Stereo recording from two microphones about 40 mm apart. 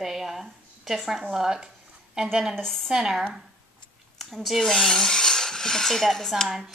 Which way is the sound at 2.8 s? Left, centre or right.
Centre.